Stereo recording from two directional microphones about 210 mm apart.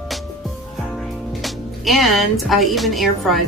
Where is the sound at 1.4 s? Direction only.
Centre (ahead or behind).